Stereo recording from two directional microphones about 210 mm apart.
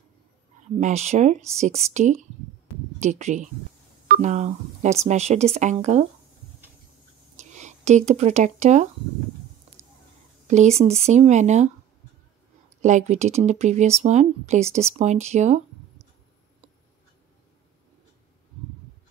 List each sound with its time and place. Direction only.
0.7 s speech: 35° right (ahead or behind)
7.3 s speech: 35° right (ahead or behind)
10.4 s speech: 35° right (ahead or behind)
12.8 s speech: 35° right (ahead or behind)